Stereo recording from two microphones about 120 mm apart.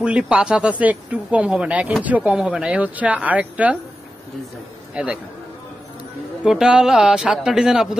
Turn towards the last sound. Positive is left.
turn(degrees=-5)  # may be behind; listen again after turning